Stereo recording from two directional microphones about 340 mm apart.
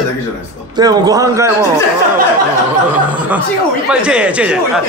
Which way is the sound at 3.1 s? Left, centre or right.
Centre.